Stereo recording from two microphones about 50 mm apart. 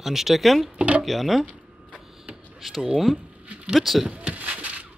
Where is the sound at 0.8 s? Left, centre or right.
Right.